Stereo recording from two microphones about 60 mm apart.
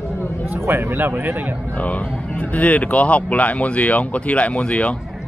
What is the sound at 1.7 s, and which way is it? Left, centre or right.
Speech, left.